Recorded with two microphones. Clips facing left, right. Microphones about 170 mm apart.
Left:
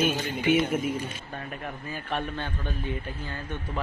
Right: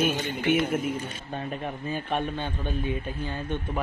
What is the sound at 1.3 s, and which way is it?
A man's voice, 20° right (ahead or behind).